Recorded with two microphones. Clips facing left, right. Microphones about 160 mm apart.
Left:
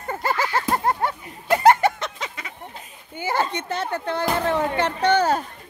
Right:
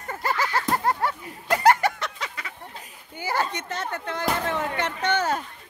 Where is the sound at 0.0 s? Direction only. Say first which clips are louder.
Left 3 dB; 30° left (ahead or behind).